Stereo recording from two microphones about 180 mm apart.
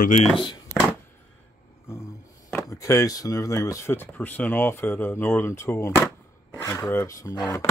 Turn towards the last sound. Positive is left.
turn(degrees=20)  # may be behind; listen again after turning